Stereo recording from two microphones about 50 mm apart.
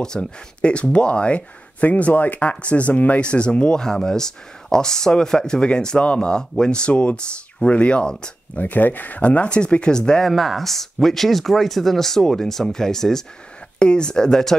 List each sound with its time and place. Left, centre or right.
0.0 s speech: centre
3.2 s speech: left
6.9 s speech: left
8.5 s speech: left; by 10.3 s centre
10.3 s speech: centre